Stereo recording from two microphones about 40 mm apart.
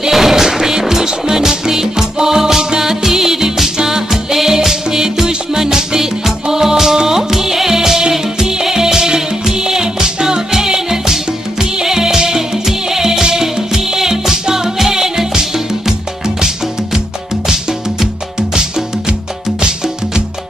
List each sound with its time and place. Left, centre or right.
0.1 s music: centre
18.5 s music: centre